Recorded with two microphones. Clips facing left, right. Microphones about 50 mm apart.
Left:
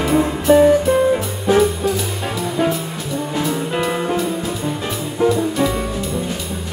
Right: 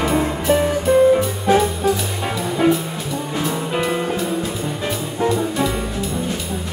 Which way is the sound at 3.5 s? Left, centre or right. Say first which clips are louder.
Right 1 dB; centre.